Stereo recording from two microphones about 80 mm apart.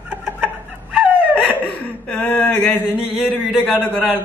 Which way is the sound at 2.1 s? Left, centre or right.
Centre.